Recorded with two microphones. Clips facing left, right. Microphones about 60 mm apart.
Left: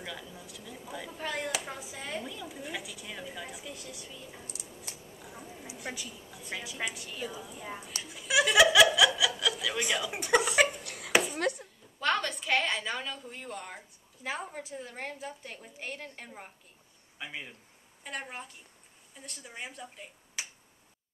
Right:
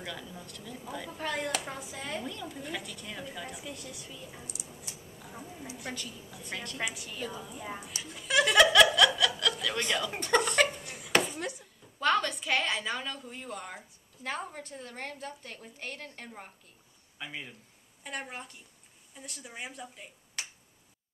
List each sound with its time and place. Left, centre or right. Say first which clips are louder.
0.0 s a woman's voice: right 1 dB; centre
5.2 s a sound: right 2 dB; centre
5.8 s a woman's voice: left 2 dB; centre
8.0 s laughter: even; centre
8.9 s a sound: right 1 dB; centre
9.4 s speech: even; centre
10.8 s a sound: left 1 dB; left
11.3 s chopping: left 6 dB; left
12.0 s a woman's voice: right 2 dB; centre